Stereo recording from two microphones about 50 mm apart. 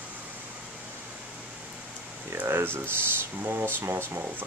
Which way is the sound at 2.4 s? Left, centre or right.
Right.